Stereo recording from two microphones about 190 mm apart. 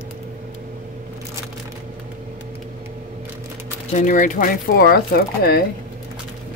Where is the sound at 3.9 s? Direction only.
40° left (ahead or behind).